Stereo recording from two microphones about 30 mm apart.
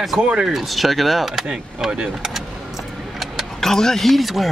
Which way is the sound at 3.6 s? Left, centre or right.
Centre.